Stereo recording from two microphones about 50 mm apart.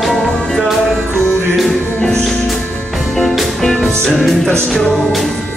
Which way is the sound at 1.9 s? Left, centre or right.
Centre.